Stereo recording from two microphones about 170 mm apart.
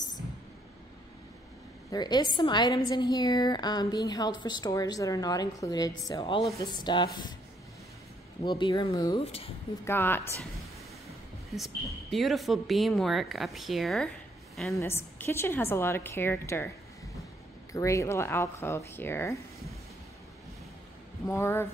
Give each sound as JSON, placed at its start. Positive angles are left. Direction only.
{"t": 1.9, "sound": "a woman's voice", "side_deg": 25}
{"t": 8.5, "sound": "a woman's voice", "side_deg": 30}
{"t": 9.2, "sound": "speech", "side_deg": 35}
{"t": 9.8, "sound": "a woman's voice", "side_deg": 10}
{"t": 11.5, "sound": "speech", "side_deg": 0}
{"t": 14.8, "sound": "a woman's voice", "side_deg": 15}
{"t": 17.7, "sound": "a woman's voice", "side_deg": 15}
{"t": 21.3, "sound": "a woman's voice", "side_deg": 15}